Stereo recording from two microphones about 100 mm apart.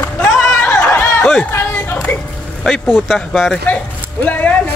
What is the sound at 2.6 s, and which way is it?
Speech, centre (ahead or behind).